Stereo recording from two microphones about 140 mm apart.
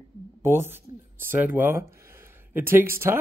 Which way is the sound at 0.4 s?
15° right (ahead or behind).